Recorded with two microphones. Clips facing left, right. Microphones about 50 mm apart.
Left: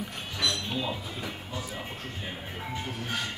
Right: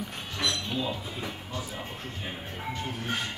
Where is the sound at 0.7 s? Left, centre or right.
Centre.